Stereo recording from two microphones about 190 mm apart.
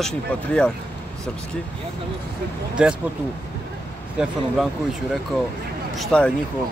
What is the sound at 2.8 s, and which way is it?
Speech, 5° right (ahead or behind).